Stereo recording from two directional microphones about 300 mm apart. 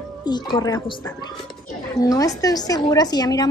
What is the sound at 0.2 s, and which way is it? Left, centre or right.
A woman's voice, centre.